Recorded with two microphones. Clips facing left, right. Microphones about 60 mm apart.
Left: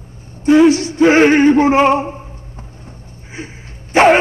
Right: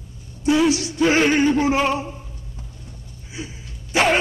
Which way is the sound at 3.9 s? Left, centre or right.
Left.